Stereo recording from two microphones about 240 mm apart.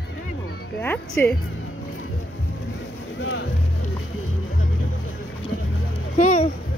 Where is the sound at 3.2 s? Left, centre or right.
Left.